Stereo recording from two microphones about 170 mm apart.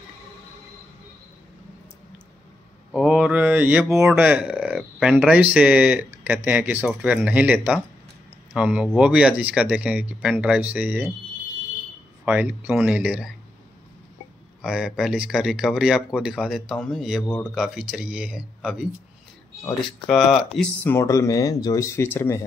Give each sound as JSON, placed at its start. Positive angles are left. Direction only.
{"t": 2.9, "sound": "speech", "side_deg": -5}
{"t": 12.3, "sound": "speech", "side_deg": -10}
{"t": 14.6, "sound": "speech", "side_deg": -5}
{"t": 17.2, "sound": "speech", "side_deg": 10}
{"t": 17.6, "sound": "speech", "side_deg": -5}
{"t": 20.1, "sound": "speech", "side_deg": 0}
{"t": 20.5, "sound": "speech", "side_deg": 10}